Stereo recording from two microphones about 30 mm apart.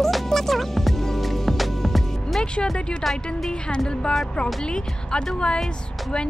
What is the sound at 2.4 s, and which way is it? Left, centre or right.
Music, left.